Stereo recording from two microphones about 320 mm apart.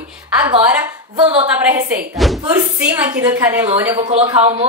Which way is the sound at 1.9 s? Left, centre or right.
Centre.